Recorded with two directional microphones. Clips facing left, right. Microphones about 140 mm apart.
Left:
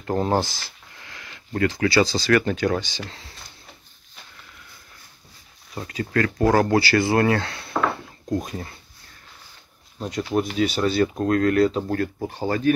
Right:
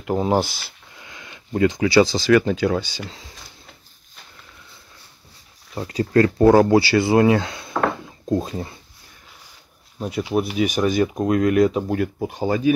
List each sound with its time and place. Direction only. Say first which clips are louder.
0.0 s speech: right 2 dB; 10° right (ahead or behind)
5.8 s speech: right 6 dB; 30° right (ahead or behind)
6.4 s speech: right 4 dB; 10° right (ahead or behind)
9.9 s speech: right 2 dB; 10° right (ahead or behind)